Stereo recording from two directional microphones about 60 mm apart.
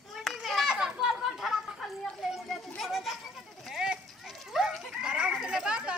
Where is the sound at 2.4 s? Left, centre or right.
Centre.